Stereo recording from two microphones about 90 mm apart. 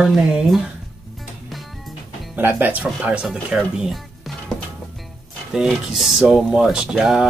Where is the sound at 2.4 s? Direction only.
20° right (ahead or behind).